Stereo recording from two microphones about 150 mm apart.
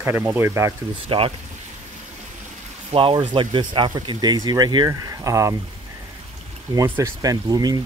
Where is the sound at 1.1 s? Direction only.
35° right (ahead or behind).